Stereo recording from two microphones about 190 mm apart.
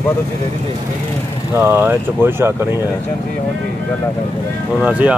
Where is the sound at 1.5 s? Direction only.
10° right (ahead or behind).